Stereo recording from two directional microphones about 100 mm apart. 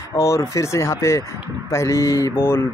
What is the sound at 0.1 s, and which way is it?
Speech, 30° left (ahead or behind).